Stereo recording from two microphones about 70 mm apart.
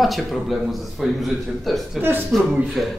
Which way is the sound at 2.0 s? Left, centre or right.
Right.